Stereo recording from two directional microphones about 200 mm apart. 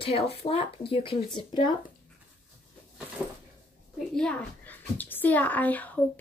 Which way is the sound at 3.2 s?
5° right (ahead or behind).